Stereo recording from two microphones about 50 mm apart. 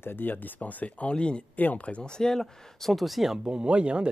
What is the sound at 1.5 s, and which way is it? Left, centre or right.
Speech, left.